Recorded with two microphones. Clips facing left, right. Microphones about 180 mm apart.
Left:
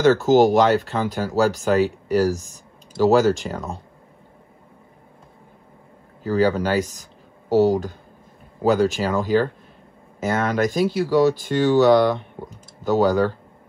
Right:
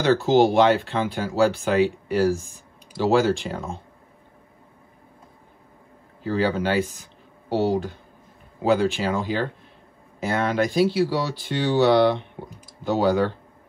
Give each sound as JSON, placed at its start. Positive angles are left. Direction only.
{"t": 0.0, "sound": "speech", "side_deg": 45}
{"t": 6.2, "sound": "speech", "side_deg": 40}